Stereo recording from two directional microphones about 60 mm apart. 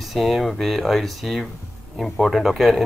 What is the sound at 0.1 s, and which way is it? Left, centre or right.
Speech, centre.